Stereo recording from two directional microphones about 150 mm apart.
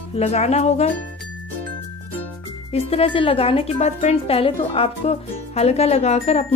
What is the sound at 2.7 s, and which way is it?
Speech, 40° left (ahead or behind).